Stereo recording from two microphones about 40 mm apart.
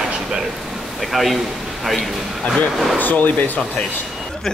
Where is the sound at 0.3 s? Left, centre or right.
Centre.